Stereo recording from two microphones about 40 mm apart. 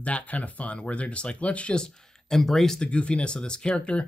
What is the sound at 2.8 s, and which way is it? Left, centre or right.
Speech, left.